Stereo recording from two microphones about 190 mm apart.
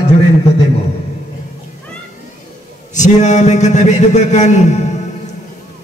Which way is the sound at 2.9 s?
40° left (ahead or behind).